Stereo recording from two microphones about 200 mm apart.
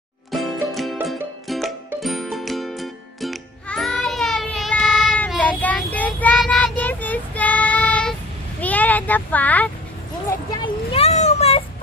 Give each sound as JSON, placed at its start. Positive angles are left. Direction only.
{"t": 0.3, "sound": "music", "side_deg": 0}
{"t": 10.3, "sound": "vehicle", "side_deg": 20}